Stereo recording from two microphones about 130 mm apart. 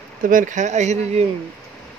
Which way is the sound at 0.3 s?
85° right.